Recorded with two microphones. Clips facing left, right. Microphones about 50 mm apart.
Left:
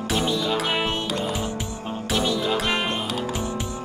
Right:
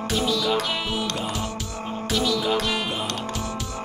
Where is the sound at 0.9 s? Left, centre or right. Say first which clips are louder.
Left 1 dB; centre.